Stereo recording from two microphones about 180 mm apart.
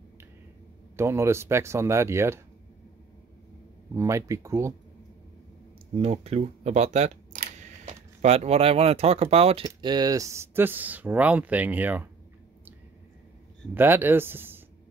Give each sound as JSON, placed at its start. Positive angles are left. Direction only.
{"t": 0.9, "sound": "speech", "side_deg": -15}
{"t": 3.9, "sound": "speech", "side_deg": -15}
{"t": 5.9, "sound": "speech", "side_deg": -35}
{"t": 9.7, "sound": "speech", "side_deg": -25}
{"t": 13.7, "sound": "speech", "side_deg": -10}